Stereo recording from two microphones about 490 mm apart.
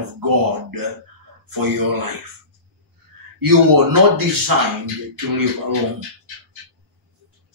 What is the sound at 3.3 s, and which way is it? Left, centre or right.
Speech, right.